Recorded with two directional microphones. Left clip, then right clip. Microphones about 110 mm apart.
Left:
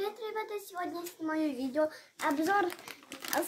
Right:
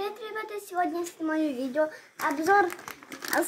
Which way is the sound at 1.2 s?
10° left (ahead or behind).